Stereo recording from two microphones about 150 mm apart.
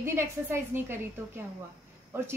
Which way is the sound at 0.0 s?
15° right (ahead or behind).